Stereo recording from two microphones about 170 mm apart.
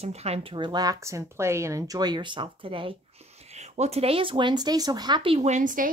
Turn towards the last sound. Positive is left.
turn(degrees=-50)  # may be behind; listen again after turning